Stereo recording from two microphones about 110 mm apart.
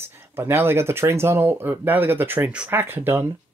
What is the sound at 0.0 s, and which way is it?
Speech, 20° right (ahead or behind).